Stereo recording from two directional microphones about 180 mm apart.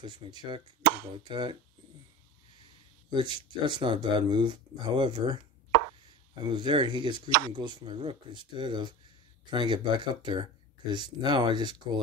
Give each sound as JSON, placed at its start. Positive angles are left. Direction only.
{"t": 0.0, "sound": "speech", "side_deg": -25}
{"t": 3.1, "sound": "speech", "side_deg": -25}
{"t": 6.4, "sound": "speech", "side_deg": -25}